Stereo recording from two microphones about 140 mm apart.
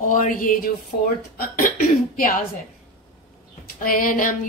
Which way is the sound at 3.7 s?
85° left.